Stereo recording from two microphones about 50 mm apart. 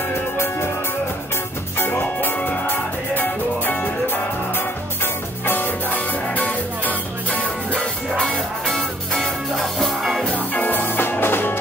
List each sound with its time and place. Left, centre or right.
0.1 s music: left
1.8 s music: left
8.2 s music: centre
10.3 s music: left